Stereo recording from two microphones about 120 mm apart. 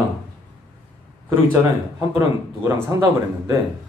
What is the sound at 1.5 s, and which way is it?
Speech, 20° right (ahead or behind).